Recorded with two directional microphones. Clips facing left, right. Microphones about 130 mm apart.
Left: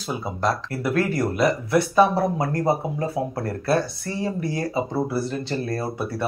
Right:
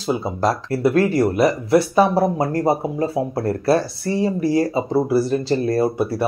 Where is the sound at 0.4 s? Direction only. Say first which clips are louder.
Right 4 dB; 30° right (ahead or behind).